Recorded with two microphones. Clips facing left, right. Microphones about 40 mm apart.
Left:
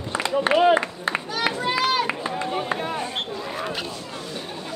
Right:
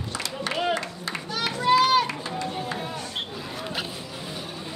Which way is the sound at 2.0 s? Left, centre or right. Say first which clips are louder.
Left 4 dB; left.